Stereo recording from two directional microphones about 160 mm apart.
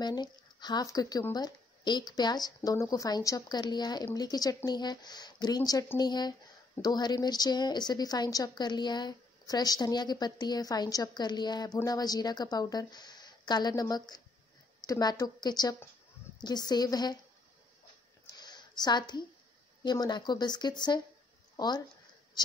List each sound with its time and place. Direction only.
0.0 s speech: 25° left (ahead or behind)
18.2 s a sound: 25° left (ahead or behind)
19.8 s speech: 25° left (ahead or behind)